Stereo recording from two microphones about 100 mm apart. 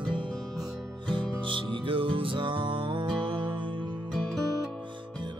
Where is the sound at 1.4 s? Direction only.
60° right (ahead or behind).